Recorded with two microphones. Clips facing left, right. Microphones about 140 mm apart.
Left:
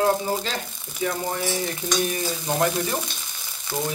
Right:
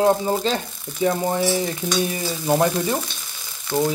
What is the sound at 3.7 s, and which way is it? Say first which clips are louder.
Frying: right 7 dB; 5° left (ahead or behind).